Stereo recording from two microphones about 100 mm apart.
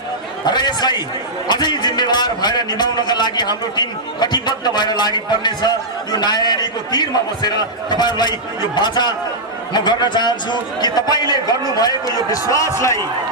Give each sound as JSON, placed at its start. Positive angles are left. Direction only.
{"t": 0.5, "sound": "a man's voice", "side_deg": 45}